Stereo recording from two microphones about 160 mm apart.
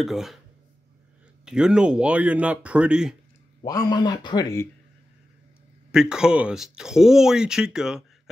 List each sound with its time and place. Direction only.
0.0 s speech: centre (ahead or behind)
1.4 s speech: 5° right (ahead or behind)
3.6 s speech: 25° left (ahead or behind)
5.9 s speech: 5° right (ahead or behind)